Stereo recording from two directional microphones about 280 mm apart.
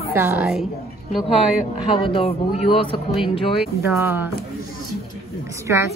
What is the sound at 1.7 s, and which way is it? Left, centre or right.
Speech, centre.